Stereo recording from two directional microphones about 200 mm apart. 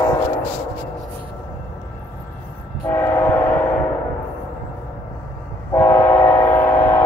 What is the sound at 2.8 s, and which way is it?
Train, 10° left (ahead or behind).